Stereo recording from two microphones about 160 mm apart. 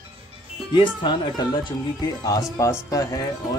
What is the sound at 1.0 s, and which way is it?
Speech, 30° left (ahead or behind).